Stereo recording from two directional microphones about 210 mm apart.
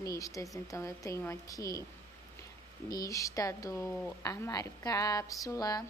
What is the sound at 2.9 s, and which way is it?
Speech, 15° left (ahead or behind).